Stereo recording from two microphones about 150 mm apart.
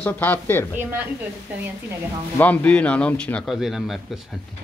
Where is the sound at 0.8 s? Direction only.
15° right (ahead or behind).